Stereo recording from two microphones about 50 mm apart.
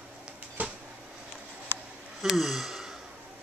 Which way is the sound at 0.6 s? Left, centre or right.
Right.